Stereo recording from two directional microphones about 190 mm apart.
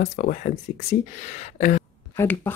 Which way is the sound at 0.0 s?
40° left (ahead or behind).